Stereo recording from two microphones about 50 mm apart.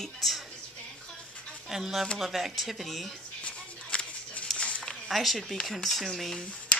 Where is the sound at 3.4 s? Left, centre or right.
Left.